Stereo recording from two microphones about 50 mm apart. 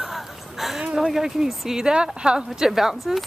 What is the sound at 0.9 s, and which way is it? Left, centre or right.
Speech, centre.